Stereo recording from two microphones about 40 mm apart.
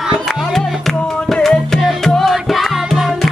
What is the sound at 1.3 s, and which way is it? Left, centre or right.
Music, centre.